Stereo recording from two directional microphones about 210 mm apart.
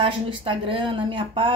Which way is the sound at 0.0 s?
25° right (ahead or behind).